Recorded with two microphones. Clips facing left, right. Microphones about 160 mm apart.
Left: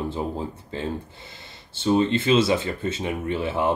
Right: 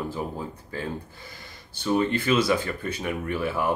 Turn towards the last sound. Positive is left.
turn(degrees=25)  # may be behind; listen again after turning